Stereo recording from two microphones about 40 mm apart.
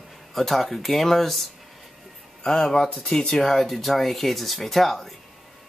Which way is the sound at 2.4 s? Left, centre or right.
Centre.